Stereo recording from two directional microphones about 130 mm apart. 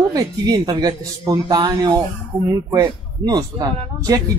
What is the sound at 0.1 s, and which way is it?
A man's voice, 30° right (ahead or behind).